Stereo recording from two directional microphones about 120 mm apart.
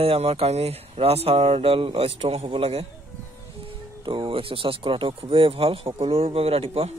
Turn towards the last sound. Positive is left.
turn(degrees=-55)  # may be behind; listen again after turning